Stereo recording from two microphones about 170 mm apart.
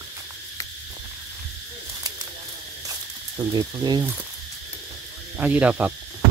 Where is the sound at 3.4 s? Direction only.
25° right (ahead or behind).